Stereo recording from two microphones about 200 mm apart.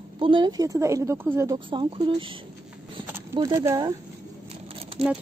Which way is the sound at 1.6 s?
25° right (ahead or behind).